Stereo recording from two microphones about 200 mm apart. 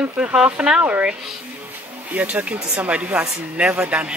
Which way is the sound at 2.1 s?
5° right (ahead or behind).